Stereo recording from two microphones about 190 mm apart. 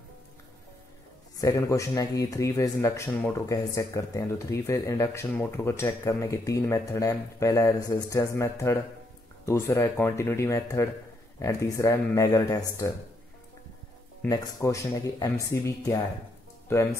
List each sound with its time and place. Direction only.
1.3 s speech: 15° left (ahead or behind)
14.3 s speech: 20° left (ahead or behind)